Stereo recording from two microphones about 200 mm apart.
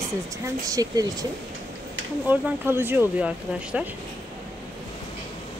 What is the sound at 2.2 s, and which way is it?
Speech, 10° right (ahead or behind).